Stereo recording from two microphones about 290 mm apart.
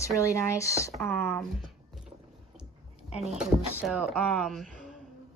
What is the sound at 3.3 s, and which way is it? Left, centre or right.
Speech, centre.